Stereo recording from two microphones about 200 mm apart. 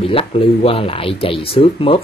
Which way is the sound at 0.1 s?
30° left (ahead or behind).